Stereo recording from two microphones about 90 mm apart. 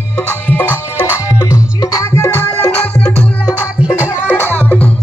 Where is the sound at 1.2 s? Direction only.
40° left (ahead or behind).